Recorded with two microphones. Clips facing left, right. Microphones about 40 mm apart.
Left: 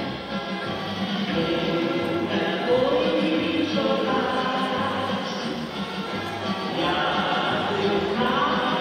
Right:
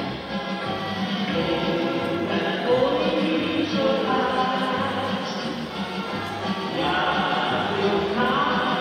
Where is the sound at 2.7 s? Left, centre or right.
Left.